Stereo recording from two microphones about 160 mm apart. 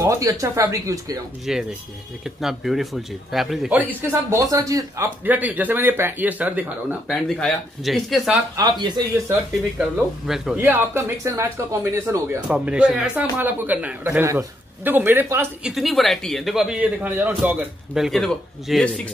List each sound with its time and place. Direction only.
0.0 s speech: 20° right (ahead or behind)
1.4 s a man's voice: centre (ahead or behind)
4.0 s speech: 20° right (ahead or behind); by 8.4 s centre (ahead or behind)
8.5 s speech: 25° right (ahead or behind)
9.3 s a man's voice: 5° right (ahead or behind)
10.6 s speech: 15° right (ahead or behind)
12.4 s speech: 5° right (ahead or behind)
15.7 s a man's voice: centre (ahead or behind)